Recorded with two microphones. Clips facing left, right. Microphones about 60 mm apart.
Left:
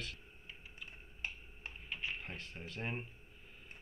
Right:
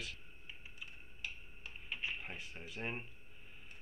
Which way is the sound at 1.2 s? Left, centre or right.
Left.